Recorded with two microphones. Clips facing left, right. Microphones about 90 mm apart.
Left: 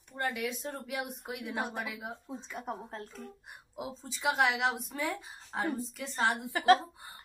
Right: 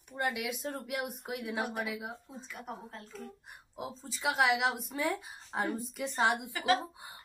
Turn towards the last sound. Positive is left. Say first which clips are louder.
# left 5 dB
turn(degrees=-15)  # may be behind; listen again after turning